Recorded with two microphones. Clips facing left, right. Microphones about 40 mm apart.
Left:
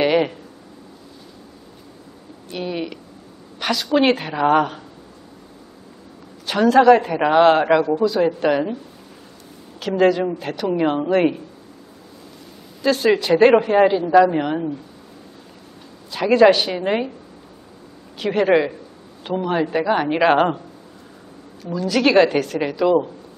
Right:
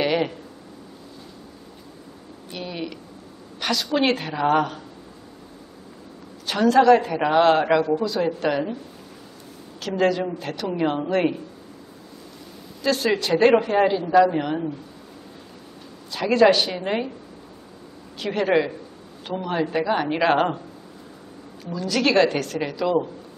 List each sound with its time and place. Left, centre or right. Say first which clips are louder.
0.0 s a sound: left 5 dB; centre
2.5 s a sound: left 5 dB; centre
3.6 s a woman's voice: left 4 dB; centre
6.4 s a woman's voice: left 3 dB; centre
9.8 s a woman's voice: left 5 dB; centre
12.8 s a woman's voice: left 5 dB; centre
16.1 s a woman's voice: left 4 dB; centre
18.2 s a woman's voice: left 4 dB; centre
21.6 s a woman's voice: left 4 dB; centre